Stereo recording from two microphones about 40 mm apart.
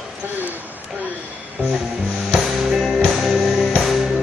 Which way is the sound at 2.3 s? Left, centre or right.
Centre.